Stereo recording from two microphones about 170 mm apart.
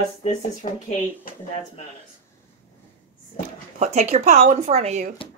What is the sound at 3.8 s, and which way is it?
Speech, 40° right (ahead or behind).